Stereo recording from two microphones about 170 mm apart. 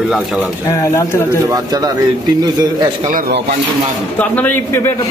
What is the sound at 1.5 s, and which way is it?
Speech, 20° right (ahead or behind).